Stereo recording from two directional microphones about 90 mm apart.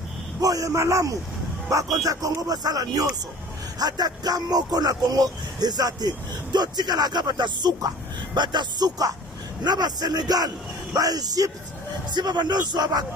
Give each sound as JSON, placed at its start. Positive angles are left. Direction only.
{"t": 0.4, "sound": "a man's voice", "side_deg": -40}
{"t": 12.1, "sound": "speech", "side_deg": -55}